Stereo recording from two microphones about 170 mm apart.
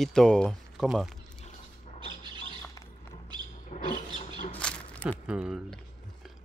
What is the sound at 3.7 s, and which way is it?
Vehicle, 40° left (ahead or behind).